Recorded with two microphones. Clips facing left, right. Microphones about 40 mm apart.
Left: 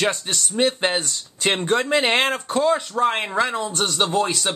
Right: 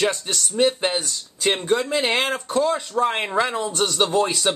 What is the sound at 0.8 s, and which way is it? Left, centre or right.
Speech, left.